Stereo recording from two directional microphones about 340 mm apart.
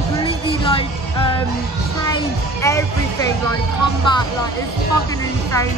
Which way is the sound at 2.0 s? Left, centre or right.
Centre.